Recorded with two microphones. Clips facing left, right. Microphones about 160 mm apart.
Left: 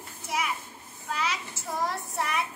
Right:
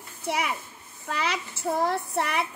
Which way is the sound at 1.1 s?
65° right (ahead or behind).